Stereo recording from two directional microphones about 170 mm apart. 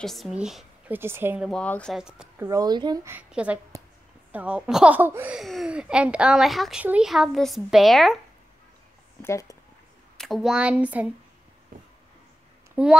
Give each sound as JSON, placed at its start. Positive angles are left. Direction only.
{"t": 0.0, "sound": "speech", "side_deg": 0}
{"t": 1.5, "sound": "speech", "side_deg": 5}
{"t": 2.4, "sound": "a woman's voice", "side_deg": -20}
{"t": 9.2, "sound": "speech", "side_deg": 20}
{"t": 10.1, "sound": "speech", "side_deg": 0}
{"t": 12.8, "sound": "speech", "side_deg": -10}